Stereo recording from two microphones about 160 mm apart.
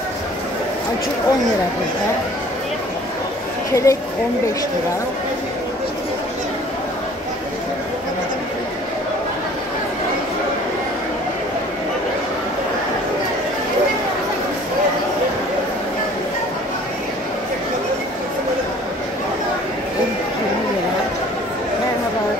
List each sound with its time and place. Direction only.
3.7 s a woman's voice: 20° left (ahead or behind)